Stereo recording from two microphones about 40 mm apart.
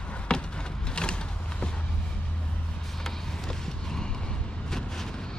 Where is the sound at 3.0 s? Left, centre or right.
Centre.